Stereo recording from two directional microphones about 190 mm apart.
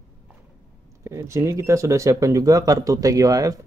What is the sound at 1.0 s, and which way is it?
Speech, 15° right (ahead or behind).